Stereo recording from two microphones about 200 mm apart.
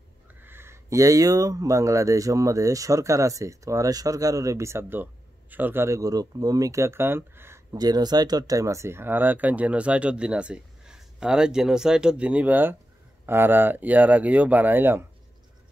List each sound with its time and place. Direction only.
0.4 s speech: 10° right (ahead or behind)